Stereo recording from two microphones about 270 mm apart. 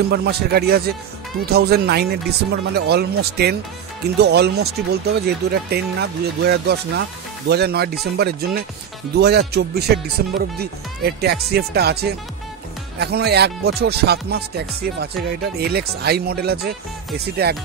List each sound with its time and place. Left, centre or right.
0.1 s speech: right